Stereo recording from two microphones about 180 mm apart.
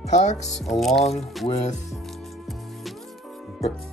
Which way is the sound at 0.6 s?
Centre (ahead or behind).